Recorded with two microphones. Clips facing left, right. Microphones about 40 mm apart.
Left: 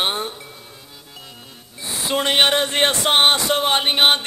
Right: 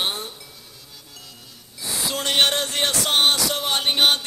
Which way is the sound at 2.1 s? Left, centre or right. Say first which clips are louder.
Left 4 dB; left.